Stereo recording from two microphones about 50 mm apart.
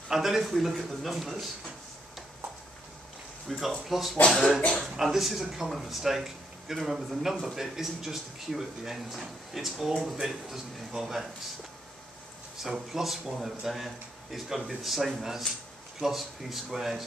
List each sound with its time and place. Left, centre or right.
0.1 s speech: centre
3.4 s speech: centre
4.6 s speech: centre
4.8 s speech: centre
12.5 s speech: centre